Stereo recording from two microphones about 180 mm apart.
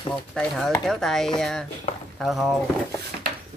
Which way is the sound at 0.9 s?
Centre (ahead or behind).